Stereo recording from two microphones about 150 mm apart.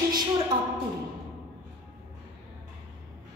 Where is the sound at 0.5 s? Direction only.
30° right (ahead or behind).